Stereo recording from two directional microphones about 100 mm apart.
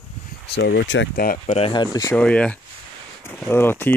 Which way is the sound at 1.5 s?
85° left.